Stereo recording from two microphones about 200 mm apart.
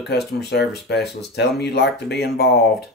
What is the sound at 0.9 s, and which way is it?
Speech, centre (ahead or behind).